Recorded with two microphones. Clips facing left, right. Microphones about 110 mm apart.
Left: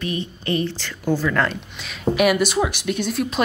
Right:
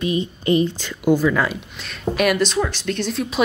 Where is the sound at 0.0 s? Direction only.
20° right (ahead or behind).